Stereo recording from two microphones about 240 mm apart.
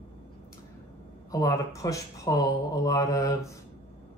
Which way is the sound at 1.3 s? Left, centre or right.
Centre.